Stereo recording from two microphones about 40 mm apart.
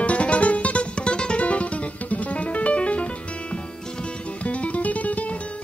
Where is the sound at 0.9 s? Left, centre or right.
Left.